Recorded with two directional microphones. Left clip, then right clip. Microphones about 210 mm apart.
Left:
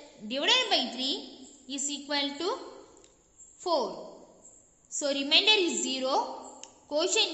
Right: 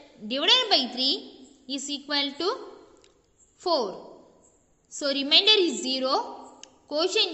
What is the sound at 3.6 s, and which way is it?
Speech, 20° right (ahead or behind).